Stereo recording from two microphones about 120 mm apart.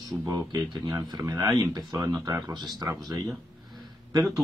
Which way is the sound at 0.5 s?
35° right (ahead or behind).